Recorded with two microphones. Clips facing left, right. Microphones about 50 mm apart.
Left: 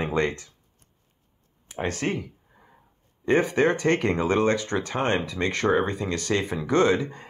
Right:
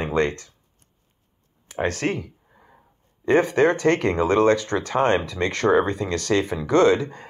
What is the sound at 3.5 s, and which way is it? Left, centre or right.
Speech, left.